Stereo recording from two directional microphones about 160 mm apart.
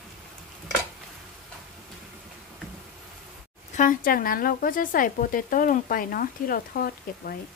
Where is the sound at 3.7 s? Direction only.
55° left (ahead or behind).